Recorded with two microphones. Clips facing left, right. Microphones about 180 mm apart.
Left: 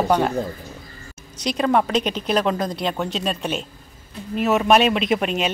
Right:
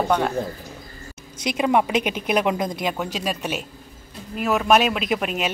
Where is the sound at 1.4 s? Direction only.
10° right (ahead or behind).